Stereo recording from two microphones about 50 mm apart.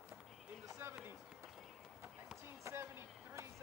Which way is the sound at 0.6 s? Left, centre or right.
Right.